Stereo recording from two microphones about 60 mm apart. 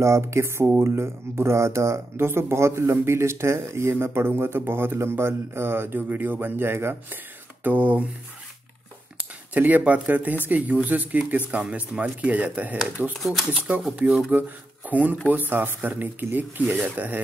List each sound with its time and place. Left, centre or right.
0.0 s speech: right
7.6 s speech: right
9.5 s speech: right